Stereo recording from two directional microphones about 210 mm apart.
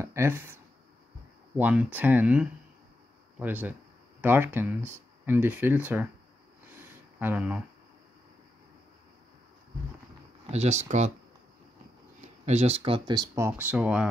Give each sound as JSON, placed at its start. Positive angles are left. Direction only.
{"t": 0.0, "sound": "a sound", "side_deg": -15}
{"t": 1.6, "sound": "speech", "side_deg": -5}
{"t": 7.2, "sound": "speech", "side_deg": -10}
{"t": 10.5, "sound": "speech", "side_deg": -30}
{"t": 12.2, "sound": "speech", "side_deg": -30}